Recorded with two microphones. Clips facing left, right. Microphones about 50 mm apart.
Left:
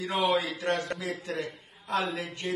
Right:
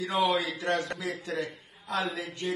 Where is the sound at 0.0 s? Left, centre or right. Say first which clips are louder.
Even; left.